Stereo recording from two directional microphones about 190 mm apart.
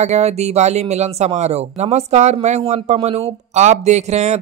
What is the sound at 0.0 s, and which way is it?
Speech, 35° right (ahead or behind).